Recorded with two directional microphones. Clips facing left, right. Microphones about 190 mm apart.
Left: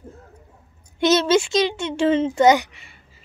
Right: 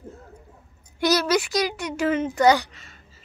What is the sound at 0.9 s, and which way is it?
A child's voice, 25° left (ahead or behind).